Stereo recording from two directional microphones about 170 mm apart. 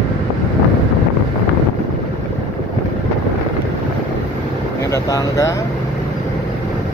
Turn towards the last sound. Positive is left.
turn(degrees=20)  # may be behind; listen again after turning